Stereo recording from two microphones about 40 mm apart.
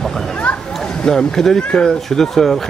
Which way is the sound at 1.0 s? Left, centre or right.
Centre.